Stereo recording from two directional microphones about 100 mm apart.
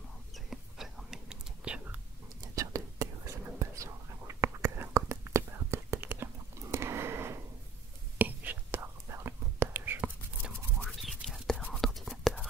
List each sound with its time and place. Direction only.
0.5 s whispering: 5° right (ahead or behind)
2.5 s whispering: 35° right (ahead or behind)
6.7 s a sound: 25° right (ahead or behind)
8.2 s whispering: 20° right (ahead or behind)
10.5 s toothbrush: 15° left (ahead or behind)
11.0 s whispering: centre (ahead or behind)